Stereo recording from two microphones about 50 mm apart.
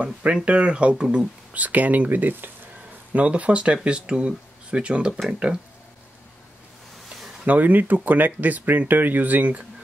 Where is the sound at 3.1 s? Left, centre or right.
Right.